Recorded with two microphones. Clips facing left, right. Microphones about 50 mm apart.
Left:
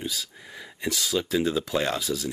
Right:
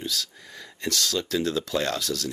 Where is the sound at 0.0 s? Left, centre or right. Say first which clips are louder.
Right 1 dB; centre.